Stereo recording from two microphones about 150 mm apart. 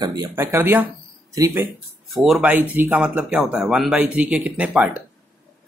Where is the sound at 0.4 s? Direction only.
15° right (ahead or behind).